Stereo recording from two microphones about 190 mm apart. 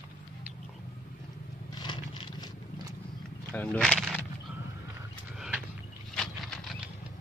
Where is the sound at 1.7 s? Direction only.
25° left (ahead or behind).